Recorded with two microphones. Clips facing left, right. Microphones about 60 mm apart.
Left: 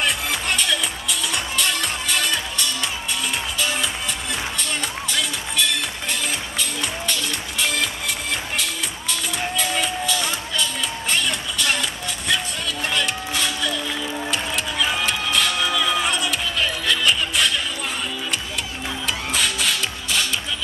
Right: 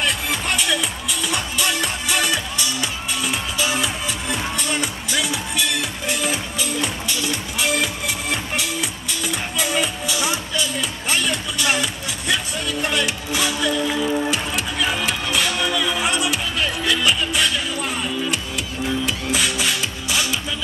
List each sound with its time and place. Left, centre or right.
0.0 s music: centre
19.0 s music: centre